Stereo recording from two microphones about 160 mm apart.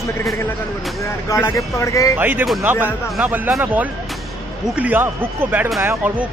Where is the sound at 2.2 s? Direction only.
10° right (ahead or behind).